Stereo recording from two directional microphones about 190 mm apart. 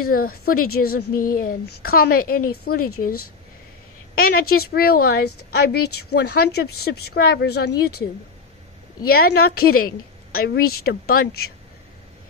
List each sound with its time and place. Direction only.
0.0 s a woman's voice: 50° left (ahead or behind)
4.1 s a woman's voice: 50° left (ahead or behind)
9.0 s a woman's voice: 55° left (ahead or behind)